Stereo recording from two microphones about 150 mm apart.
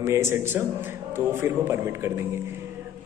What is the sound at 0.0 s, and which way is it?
A man's voice, 15° right (ahead or behind).